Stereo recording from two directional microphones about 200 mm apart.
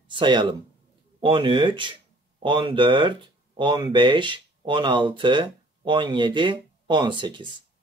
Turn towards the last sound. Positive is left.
turn(degrees=-25)  # may be behind; listen again after turning